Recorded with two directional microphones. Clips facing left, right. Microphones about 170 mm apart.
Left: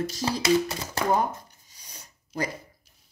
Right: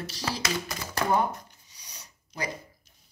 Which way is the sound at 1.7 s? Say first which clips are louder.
Left 1 dB; 50° left (ahead or behind).